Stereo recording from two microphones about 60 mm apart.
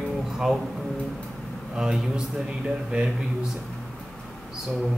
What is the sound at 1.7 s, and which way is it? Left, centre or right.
A woman's voice, centre.